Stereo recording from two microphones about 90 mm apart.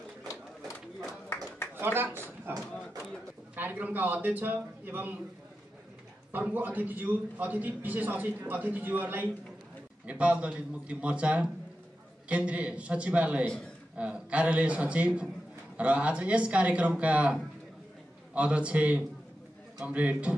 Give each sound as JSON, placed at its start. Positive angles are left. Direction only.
{"t": 1.8, "sound": "speech", "side_deg": -25}
{"t": 3.5, "sound": "a man's voice", "side_deg": -20}
{"t": 6.3, "sound": "a man's voice", "side_deg": -20}